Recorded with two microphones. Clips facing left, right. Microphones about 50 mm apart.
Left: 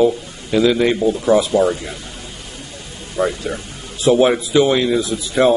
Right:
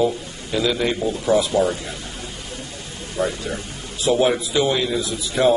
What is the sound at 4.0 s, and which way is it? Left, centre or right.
Speech, left.